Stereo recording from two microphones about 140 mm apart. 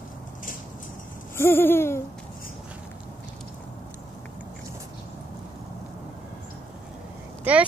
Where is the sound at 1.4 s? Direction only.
15° left (ahead or behind).